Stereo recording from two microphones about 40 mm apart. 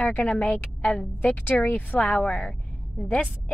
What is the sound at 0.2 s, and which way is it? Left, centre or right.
Speech, left.